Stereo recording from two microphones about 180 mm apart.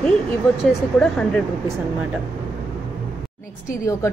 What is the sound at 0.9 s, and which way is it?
Speech, 5° left (ahead or behind).